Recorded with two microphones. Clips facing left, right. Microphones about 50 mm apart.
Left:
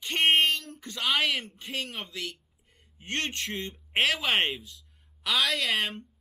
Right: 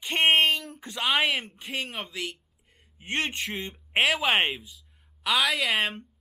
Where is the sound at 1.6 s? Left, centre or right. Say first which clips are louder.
Right 2 dB; centre.